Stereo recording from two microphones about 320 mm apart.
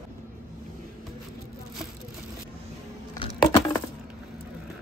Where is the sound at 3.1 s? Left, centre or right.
Centre.